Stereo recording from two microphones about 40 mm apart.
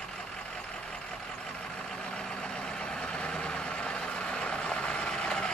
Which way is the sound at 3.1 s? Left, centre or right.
Left.